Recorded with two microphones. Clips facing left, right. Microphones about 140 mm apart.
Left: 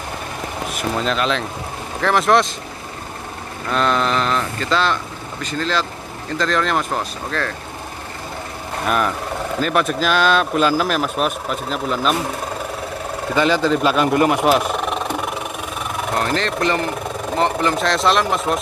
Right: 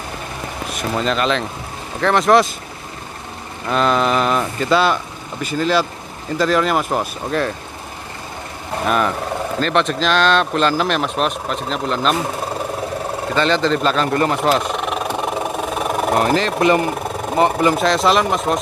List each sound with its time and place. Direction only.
0.7 s speech: centre (ahead or behind)
3.7 s speech: 5° right (ahead or behind)
8.8 s speech: centre (ahead or behind)
13.3 s speech: 10° left (ahead or behind)
15.1 s engine: 30° right (ahead or behind)
16.3 s speech: 5° right (ahead or behind)